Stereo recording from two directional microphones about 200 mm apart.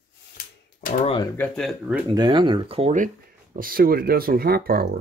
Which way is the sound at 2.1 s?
20° right (ahead or behind).